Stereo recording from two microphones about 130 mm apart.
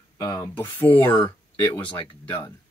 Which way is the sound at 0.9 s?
15° left (ahead or behind).